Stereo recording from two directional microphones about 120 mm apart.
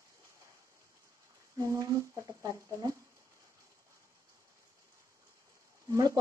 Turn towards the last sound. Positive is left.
turn(degrees=-30)  # may be behind; listen again after turning